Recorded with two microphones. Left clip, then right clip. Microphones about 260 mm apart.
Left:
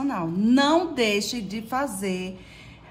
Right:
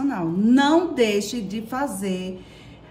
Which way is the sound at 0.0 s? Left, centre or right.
Centre.